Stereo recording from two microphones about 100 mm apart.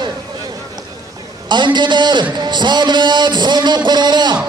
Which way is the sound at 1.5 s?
50° right (ahead or behind).